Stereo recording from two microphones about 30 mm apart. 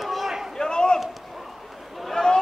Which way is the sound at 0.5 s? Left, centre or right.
Left.